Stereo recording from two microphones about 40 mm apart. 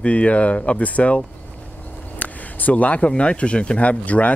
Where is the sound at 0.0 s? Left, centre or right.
Left.